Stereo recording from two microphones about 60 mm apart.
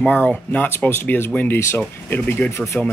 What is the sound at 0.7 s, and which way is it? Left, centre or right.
Speech, left.